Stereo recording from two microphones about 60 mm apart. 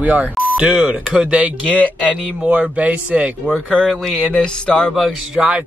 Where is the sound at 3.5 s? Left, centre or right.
Centre.